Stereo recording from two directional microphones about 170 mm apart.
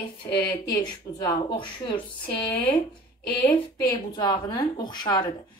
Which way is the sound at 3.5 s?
25° left (ahead or behind).